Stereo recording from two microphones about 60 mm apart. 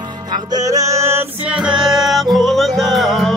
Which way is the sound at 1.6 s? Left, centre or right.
Centre.